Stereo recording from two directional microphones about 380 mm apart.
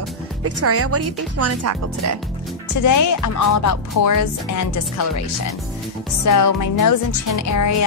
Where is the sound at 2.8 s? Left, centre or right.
Left.